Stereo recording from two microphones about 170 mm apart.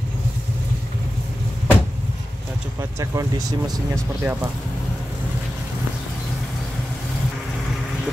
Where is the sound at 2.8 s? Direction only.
20° right (ahead or behind).